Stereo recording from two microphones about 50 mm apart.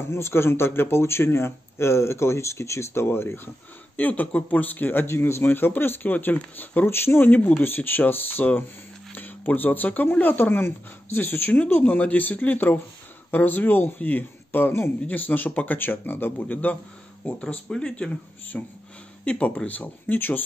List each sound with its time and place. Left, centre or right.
0.0 s speech: left
3.9 s speech: left
5.0 s speech: left
5.4 s speech: left
6.9 s speech: left
17.6 s speech: centre
19.2 s speech: left